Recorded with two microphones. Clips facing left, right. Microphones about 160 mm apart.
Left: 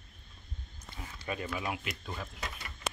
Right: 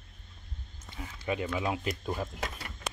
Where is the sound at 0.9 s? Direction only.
15° right (ahead or behind).